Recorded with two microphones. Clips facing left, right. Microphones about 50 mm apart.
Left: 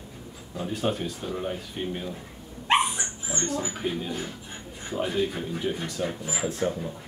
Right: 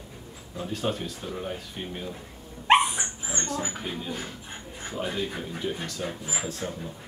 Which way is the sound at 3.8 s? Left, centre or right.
Centre.